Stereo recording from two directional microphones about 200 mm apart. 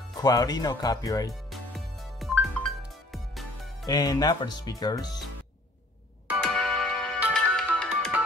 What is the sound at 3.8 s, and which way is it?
Speech, 20° left (ahead or behind).